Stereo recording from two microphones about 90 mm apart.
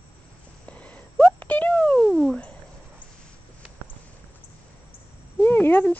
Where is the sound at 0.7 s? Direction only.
15° left (ahead or behind).